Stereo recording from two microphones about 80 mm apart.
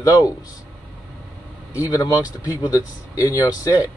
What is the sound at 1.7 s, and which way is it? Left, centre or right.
Speech, left.